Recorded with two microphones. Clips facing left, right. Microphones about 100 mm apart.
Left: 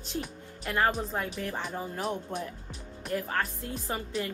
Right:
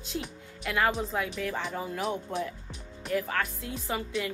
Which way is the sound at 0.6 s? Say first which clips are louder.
Even; 35° left (ahead or behind).